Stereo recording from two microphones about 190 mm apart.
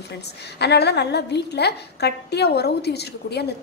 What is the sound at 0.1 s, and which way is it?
A woman's voice, 60° left (ahead or behind).